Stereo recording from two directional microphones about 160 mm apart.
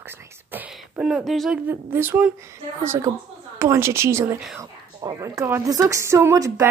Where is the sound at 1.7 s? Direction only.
15° right (ahead or behind).